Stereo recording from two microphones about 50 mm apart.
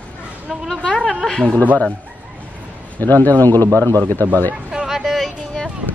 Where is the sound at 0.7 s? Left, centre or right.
Centre.